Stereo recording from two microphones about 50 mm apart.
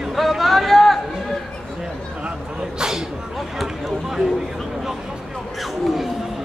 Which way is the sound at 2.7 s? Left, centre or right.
Centre.